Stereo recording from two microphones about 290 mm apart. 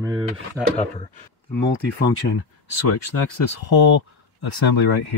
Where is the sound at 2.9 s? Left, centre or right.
Left.